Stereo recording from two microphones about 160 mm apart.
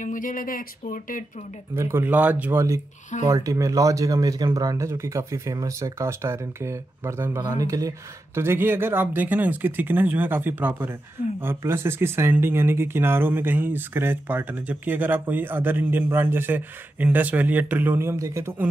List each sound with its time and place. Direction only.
0.0 s speech: 55° left (ahead or behind)
1.8 s speech: 15° right (ahead or behind)